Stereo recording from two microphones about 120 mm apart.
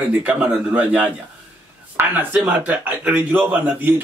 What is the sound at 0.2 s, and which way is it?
Speech, 10° right (ahead or behind).